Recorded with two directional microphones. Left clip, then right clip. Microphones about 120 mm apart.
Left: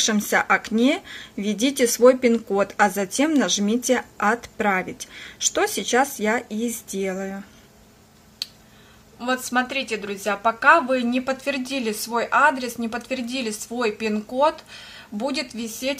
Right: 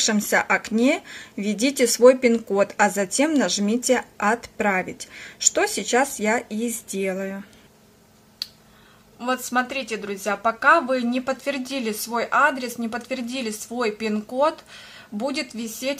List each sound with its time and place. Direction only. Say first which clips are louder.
0.0 s a woman's voice: even; 5° left (ahead or behind)
9.2 s a woman's voice: even; centre (ahead or behind)